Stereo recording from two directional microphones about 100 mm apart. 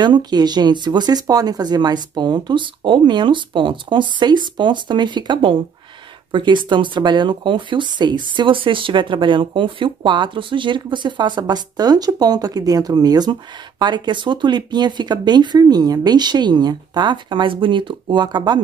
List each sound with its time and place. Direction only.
0.0 s speech: 45° right (ahead or behind)